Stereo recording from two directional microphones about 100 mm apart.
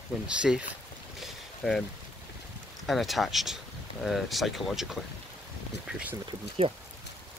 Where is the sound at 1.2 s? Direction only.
5° left (ahead or behind).